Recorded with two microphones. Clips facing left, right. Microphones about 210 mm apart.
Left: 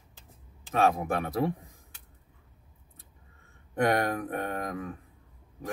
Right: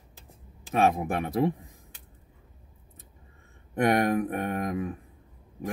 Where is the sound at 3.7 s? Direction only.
20° right (ahead or behind).